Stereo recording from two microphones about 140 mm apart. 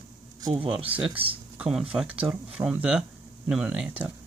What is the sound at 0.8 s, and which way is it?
Speech, 40° right (ahead or behind).